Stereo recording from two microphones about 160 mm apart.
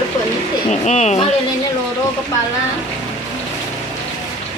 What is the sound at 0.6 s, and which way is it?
Speech, 45° left (ahead or behind).